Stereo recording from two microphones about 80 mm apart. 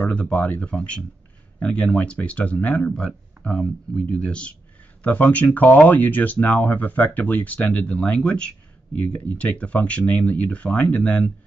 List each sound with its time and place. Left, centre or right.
0.0 s speech: centre